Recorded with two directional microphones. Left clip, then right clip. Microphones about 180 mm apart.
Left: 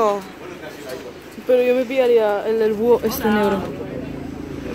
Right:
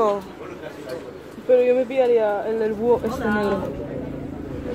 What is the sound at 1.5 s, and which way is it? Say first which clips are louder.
Speech: left 1 dB; 45° left (ahead or behind).